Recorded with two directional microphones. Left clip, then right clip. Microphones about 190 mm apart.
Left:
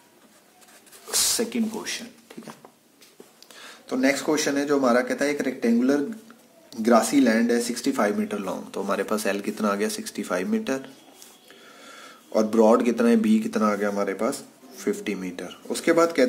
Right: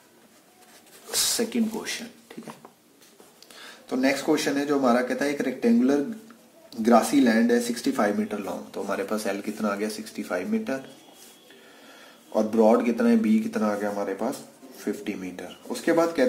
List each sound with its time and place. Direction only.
1.0 s speech: 20° left (ahead or behind); by 2.5 s 5° left (ahead or behind)
3.5 s a man's voice: 15° left (ahead or behind); by 10.8 s 35° left (ahead or behind)
12.3 s speech: 35° left (ahead or behind)